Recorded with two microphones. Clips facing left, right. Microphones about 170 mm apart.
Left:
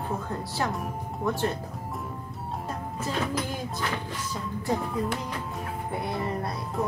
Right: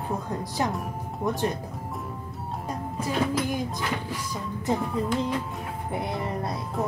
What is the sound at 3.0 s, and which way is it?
Music, 15° right (ahead or behind).